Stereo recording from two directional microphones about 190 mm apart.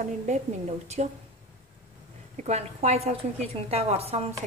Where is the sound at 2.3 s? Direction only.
35° right (ahead or behind).